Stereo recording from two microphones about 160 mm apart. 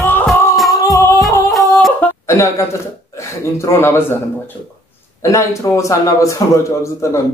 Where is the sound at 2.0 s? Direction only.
20° left (ahead or behind).